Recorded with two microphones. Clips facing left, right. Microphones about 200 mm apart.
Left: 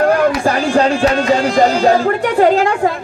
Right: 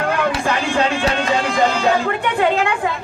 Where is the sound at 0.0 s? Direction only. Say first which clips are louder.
Left 7 dB; 40° left (ahead or behind).